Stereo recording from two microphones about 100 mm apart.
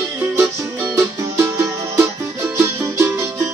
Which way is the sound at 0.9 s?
30° right (ahead or behind).